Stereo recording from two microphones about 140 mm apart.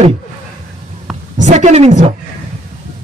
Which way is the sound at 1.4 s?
55° right (ahead or behind).